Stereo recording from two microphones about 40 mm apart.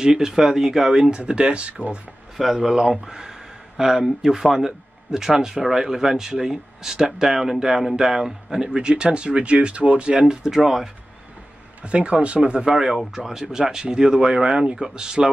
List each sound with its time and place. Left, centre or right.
0.0 s speech: centre
1.1 s speech: right
2.3 s speech: centre; by 10.3 s right
10.4 s speech: centre
11.8 s speech: right
12.6 s speech: centre